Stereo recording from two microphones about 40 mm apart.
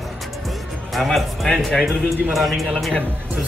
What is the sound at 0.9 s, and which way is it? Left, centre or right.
Speech, centre.